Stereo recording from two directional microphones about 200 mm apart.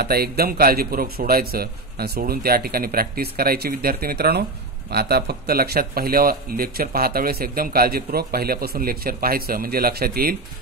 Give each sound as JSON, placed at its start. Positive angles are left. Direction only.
{"t": 0.0, "sound": "speech", "side_deg": -50}